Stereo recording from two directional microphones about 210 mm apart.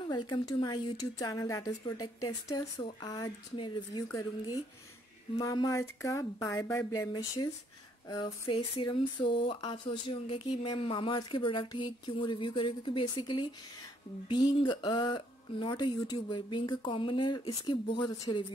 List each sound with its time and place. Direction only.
0.0 s speech: 20° left (ahead or behind)